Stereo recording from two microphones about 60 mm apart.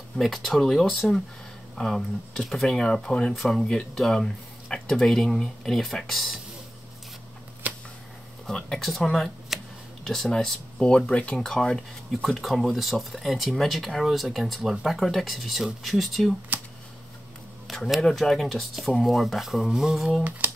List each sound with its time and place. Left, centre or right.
0.2 s speech: centre
7.6 s a sound: right
8.5 s speech: centre
9.5 s a sound: centre
10.0 s speech: centre
17.6 s speech: centre
20.2 s speech: right